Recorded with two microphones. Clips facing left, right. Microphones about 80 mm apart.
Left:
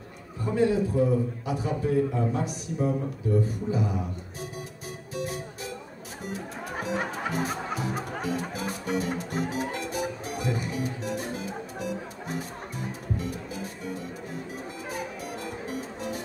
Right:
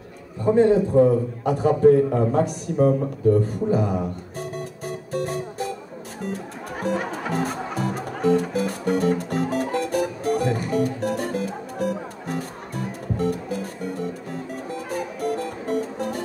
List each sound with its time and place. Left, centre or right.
0.5 s a man's voice: right
3.4 s music: right
6.8 s music: right